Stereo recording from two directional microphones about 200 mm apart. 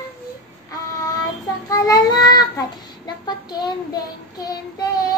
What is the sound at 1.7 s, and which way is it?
A child's voice, 20° left (ahead or behind).